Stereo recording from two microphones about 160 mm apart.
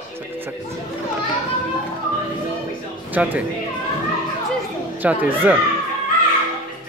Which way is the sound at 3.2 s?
10° right (ahead or behind).